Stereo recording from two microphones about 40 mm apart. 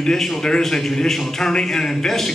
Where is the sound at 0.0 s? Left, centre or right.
Centre.